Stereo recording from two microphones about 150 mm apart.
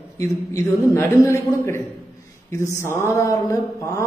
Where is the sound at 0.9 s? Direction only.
20° left (ahead or behind).